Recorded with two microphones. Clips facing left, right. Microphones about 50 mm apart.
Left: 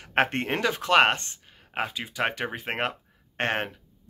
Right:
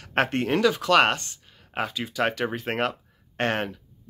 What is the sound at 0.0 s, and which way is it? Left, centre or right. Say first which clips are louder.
Speech: right 1 dB; left.